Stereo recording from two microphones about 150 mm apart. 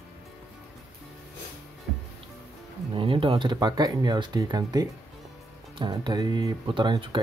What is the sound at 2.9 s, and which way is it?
Speech, 35° right (ahead or behind).